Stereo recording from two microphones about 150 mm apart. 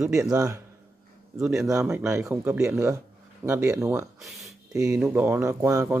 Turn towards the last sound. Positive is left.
turn(degrees=-20)  # may be behind; listen again after turning